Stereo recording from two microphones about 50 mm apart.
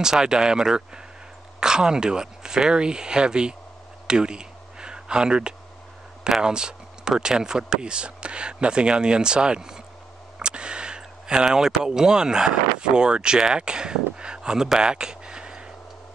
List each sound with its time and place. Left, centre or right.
0.0 s speech: centre
4.1 s a sound: centre
6.2 s speech: centre